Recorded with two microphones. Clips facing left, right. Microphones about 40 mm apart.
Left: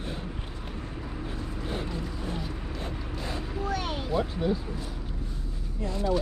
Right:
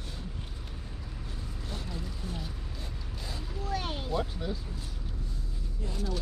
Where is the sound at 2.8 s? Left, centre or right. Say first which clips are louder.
Left 8 dB; left.